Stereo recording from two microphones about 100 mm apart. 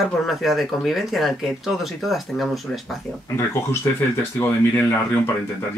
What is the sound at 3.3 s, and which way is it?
Speech, 25° left (ahead or behind).